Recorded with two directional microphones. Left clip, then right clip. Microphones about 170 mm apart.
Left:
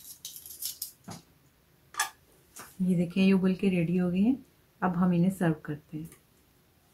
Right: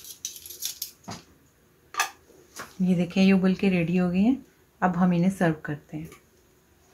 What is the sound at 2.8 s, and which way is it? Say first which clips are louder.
A woman's voice: right 4 dB; 20° right (ahead or behind).